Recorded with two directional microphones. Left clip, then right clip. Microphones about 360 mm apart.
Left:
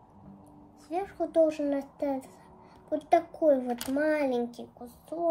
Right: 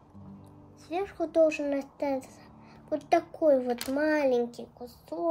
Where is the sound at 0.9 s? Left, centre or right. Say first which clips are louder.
Even; centre.